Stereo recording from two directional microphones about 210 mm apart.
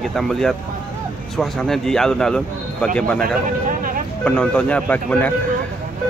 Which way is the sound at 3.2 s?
40° right (ahead or behind).